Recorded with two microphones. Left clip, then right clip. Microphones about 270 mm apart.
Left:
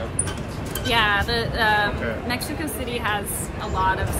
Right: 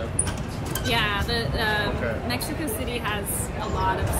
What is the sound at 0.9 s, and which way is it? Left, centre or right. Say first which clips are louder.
A woman's voice: left 5 dB; centre.